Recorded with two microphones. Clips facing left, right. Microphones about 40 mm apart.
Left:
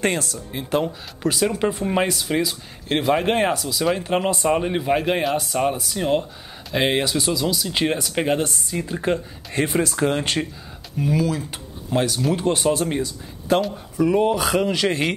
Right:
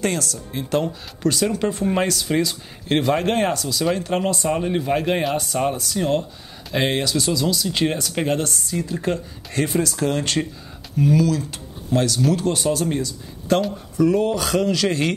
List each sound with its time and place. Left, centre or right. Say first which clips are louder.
0.0 s speech: left 1 dB; left
0.5 s speech: even; centre
4.0 s speech: left 1 dB; centre